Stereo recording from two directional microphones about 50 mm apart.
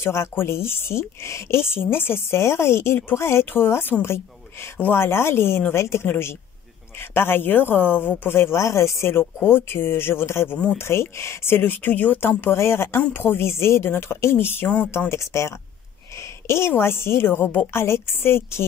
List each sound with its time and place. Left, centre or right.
0.0 s a woman's voice: left
4.0 s a woman's voice: left
4.7 s a woman's voice: left
8.4 s a woman's voice: left
12.2 s a woman's voice: left
16.2 s a woman's voice: left